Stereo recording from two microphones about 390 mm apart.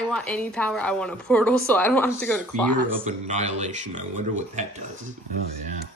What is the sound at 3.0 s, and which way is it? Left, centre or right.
Speech, centre.